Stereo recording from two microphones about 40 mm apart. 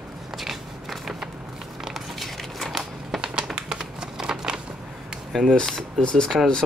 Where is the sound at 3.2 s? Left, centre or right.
Right.